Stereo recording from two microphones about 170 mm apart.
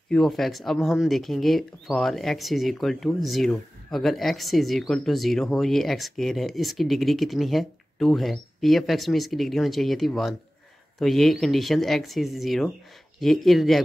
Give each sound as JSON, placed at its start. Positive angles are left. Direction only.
{"t": 0.1, "sound": "speech", "side_deg": 0}